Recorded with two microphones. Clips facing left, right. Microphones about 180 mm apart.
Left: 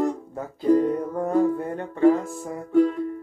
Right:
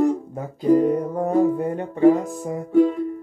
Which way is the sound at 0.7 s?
15° right (ahead or behind).